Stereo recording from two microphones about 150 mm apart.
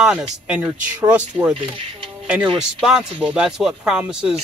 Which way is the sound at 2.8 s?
5° right (ahead or behind).